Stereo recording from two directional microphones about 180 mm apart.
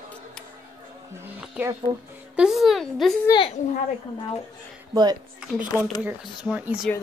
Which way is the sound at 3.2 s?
25° left (ahead or behind).